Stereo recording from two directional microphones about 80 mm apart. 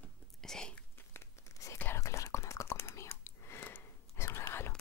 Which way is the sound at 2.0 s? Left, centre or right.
Left.